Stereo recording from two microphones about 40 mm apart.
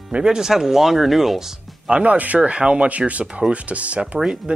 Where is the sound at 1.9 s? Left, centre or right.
Right.